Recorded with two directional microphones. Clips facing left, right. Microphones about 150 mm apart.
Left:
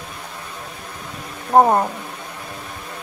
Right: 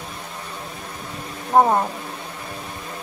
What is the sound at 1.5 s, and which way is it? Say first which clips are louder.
Speech: left 2 dB; 20° left (ahead or behind).